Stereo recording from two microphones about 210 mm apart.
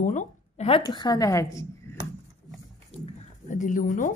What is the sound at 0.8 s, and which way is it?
Speech, 20° left (ahead or behind).